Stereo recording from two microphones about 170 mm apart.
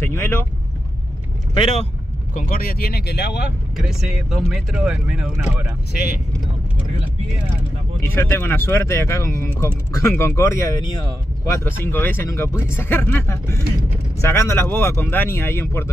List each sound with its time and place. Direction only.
0.0 s speech: 15° left (ahead or behind)
1.5 s speech: 35° left (ahead or behind)
2.3 s speech: 55° left (ahead or behind); by 3.4 s 75° left (ahead or behind)
3.7 s speech: centre (ahead or behind)
5.9 s speech: 60° left (ahead or behind)
8.0 s speech: 15° left (ahead or behind)